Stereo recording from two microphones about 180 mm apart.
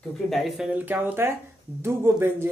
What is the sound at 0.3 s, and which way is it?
Speech, centre (ahead or behind).